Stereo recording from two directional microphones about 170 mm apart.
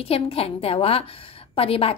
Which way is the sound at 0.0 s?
35° left (ahead or behind).